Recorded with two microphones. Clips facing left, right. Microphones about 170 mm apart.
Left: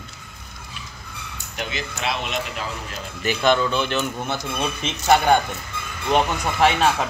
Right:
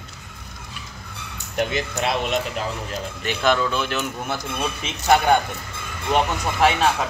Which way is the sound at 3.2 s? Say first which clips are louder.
Left 2 dB; centre (ahead or behind).